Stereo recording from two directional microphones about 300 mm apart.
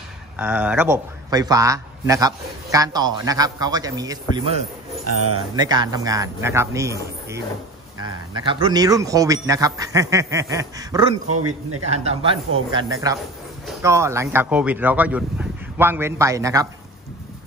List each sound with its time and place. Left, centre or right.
0.4 s a man's voice: centre
5.0 s a man's voice: right
5.6 s a man's voice: centre
11.2 s a man's voice: right
11.9 s a man's voice: right